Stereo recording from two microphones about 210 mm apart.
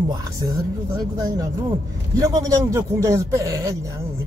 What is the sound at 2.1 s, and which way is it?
Speech, 15° right (ahead or behind).